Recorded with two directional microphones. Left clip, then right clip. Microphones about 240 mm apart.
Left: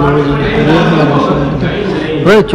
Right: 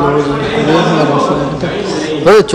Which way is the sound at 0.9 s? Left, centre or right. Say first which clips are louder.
Left 1 dB; right.